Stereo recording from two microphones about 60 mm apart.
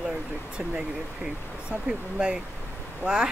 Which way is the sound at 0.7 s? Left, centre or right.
Centre.